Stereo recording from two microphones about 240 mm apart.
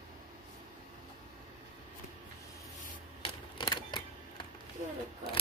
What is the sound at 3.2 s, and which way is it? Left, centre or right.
Camera, centre.